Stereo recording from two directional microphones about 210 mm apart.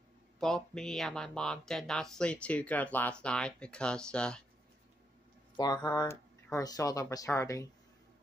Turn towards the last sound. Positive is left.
turn(degrees=15)  # may be behind; listen again after turning